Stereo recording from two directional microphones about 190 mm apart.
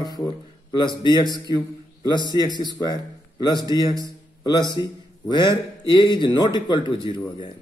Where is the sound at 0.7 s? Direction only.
25° left (ahead or behind).